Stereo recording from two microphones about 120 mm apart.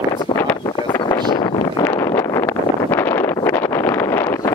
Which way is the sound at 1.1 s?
35° left (ahead or behind).